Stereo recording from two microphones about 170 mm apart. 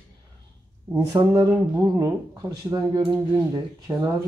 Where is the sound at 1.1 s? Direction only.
20° right (ahead or behind).